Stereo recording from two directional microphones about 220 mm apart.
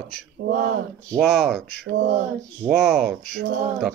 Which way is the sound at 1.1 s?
Centre (ahead or behind).